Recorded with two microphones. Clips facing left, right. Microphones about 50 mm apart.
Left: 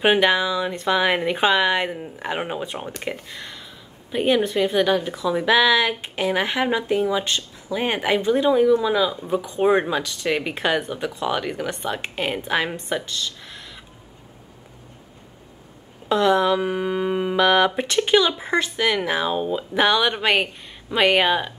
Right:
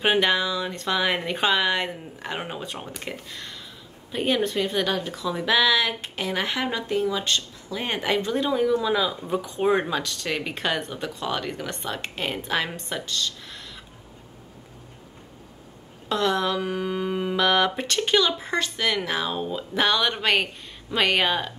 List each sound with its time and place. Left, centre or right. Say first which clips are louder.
0.0 s a woman's voice: left 4 dB; centre
16.1 s a woman's voice: left 6 dB; centre